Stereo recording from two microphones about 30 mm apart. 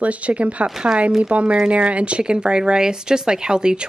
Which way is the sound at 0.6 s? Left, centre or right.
Centre.